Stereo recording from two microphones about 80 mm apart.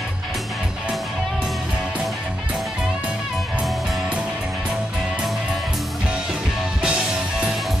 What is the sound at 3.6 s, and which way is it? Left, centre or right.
Music, centre.